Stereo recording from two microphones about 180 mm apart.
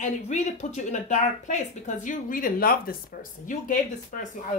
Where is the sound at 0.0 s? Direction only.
45° left (ahead or behind).